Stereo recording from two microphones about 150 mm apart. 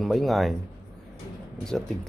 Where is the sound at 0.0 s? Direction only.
Centre (ahead or behind).